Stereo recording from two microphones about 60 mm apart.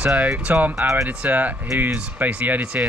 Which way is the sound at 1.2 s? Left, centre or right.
Right.